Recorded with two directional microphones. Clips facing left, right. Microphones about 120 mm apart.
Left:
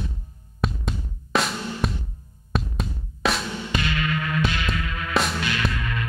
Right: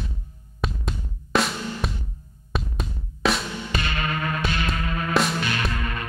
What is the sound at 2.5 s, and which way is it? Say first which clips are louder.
Drum: left 2 dB; centre (ahead or behind).